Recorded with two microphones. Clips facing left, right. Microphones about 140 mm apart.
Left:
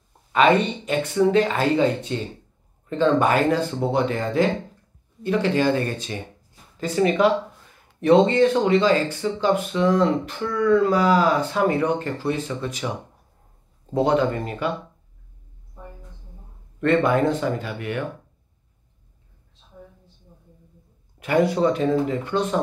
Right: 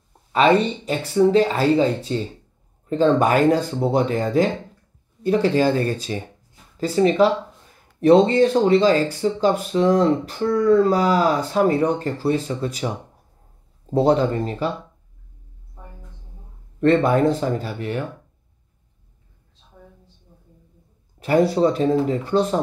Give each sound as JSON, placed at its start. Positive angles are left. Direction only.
{"t": 0.3, "sound": "speech", "side_deg": -35}
{"t": 16.8, "sound": "speech", "side_deg": -40}
{"t": 21.2, "sound": "speech", "side_deg": -35}